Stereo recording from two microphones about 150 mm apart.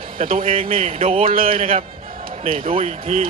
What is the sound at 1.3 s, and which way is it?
Speech, 70° right (ahead or behind).